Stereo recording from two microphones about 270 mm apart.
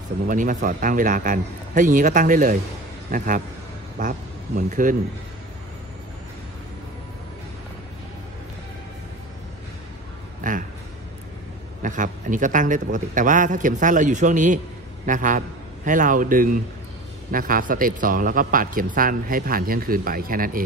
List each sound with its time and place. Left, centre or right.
0.3 s a man's voice: right
10.4 s a sound: right
11.8 s a man's voice: right